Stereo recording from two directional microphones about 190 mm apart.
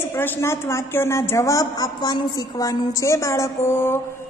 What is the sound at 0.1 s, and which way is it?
A woman's voice, 15° left (ahead or behind).